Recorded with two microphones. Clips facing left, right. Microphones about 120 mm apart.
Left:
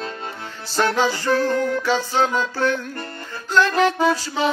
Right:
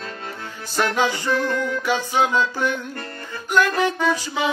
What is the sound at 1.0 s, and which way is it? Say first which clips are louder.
Music: left 1 dB; 20° right (ahead or behind).